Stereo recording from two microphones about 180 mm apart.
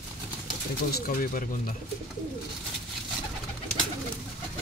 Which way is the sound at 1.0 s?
50° left (ahead or behind).